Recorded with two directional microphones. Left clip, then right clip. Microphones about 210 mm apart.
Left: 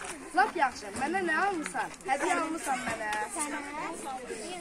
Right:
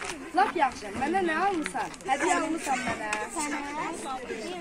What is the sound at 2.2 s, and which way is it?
Speech, 40° left (ahead or behind).